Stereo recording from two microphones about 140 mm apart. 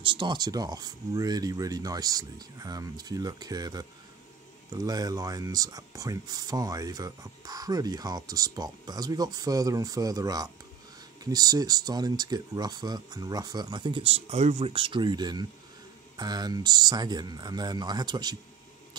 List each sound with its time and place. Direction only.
0.0 s speech: 35° right (ahead or behind); by 14.7 s 55° right (ahead or behind)
14.7 s speech: 35° right (ahead or behind)